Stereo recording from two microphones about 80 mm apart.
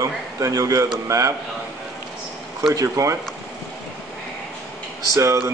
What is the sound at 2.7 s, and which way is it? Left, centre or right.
Speech, right.